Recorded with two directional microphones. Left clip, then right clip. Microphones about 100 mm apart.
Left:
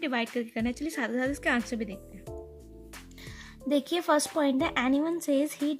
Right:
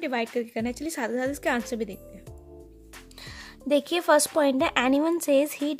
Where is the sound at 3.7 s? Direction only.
30° right (ahead or behind).